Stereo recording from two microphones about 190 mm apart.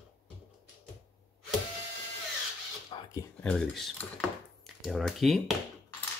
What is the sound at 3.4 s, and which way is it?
Speech, 5° left (ahead or behind).